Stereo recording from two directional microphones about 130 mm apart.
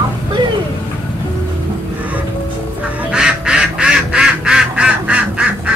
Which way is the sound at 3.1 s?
5° right (ahead or behind).